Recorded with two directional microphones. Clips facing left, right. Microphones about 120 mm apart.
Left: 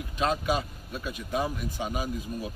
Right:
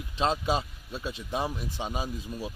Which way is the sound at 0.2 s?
30° right (ahead or behind).